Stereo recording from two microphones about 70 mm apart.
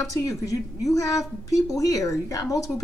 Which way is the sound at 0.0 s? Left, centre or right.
Left.